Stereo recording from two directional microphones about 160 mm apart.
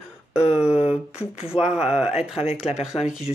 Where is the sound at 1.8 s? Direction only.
40° left (ahead or behind).